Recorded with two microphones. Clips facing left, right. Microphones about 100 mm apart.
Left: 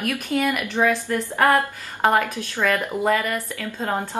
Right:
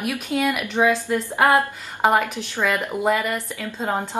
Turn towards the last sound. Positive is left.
turn(degrees=-10)  # may be behind; listen again after turning